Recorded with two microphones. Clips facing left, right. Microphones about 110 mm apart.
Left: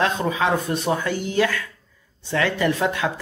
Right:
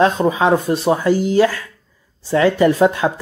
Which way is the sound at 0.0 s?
30° right (ahead or behind).